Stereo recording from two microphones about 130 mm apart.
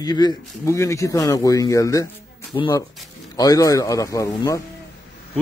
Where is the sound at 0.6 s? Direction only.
20° left (ahead or behind).